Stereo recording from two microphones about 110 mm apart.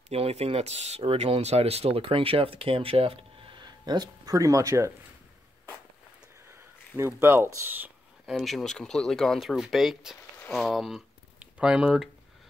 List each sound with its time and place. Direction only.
0.1 s speech: 70° right (ahead or behind); by 4.9 s 30° right (ahead or behind)
7.0 s speech: 20° right (ahead or behind)
8.3 s speech: centre (ahead or behind)